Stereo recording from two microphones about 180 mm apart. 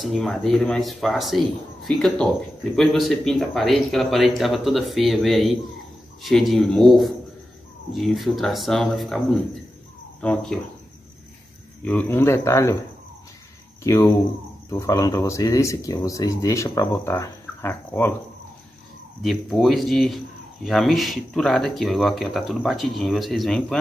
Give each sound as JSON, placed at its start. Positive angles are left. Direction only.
{"t": 0.0, "sound": "speech", "side_deg": 0}
{"t": 11.8, "sound": "speech", "side_deg": 10}
{"t": 13.8, "sound": "speech", "side_deg": 20}
{"t": 19.2, "sound": "speech", "side_deg": 0}